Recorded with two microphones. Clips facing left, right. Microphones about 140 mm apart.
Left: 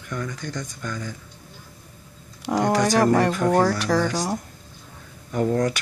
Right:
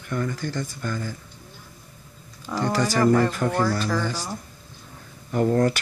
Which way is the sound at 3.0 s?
75° left (ahead or behind).